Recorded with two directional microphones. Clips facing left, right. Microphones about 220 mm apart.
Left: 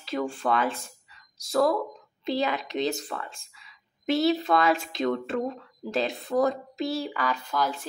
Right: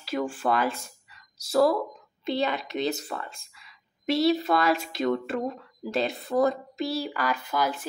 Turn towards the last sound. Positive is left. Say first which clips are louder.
# right 1 dB
turn(degrees=-5)  # may be behind; listen again after turning